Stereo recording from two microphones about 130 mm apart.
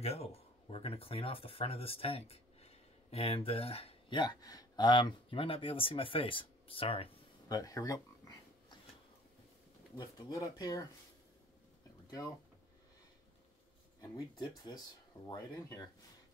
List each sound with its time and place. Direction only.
0.0 s speech: 50° left (ahead or behind)
7.4 s a sound: 30° left (ahead or behind)
9.9 s speech: 30° left (ahead or behind)
14.0 s speech: 30° left (ahead or behind)